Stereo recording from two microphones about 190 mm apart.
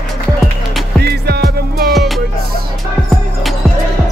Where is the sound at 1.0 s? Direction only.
60° right (ahead or behind).